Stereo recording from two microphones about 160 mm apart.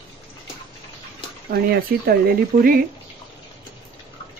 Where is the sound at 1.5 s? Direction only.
70° right (ahead or behind).